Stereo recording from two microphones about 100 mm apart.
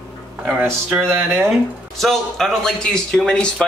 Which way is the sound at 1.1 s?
20° right (ahead or behind).